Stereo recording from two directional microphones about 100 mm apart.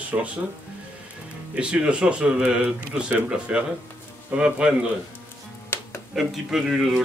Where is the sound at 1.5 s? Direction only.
10° right (ahead or behind).